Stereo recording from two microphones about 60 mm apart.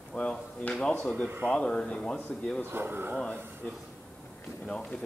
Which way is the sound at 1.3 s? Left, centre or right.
Right.